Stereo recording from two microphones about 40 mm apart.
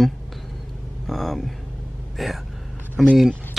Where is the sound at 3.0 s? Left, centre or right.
Centre.